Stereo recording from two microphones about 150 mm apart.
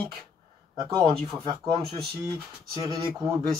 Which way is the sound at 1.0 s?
45° right (ahead or behind).